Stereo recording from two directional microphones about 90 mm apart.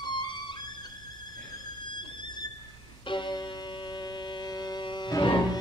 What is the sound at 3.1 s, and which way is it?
Music, 60° left (ahead or behind).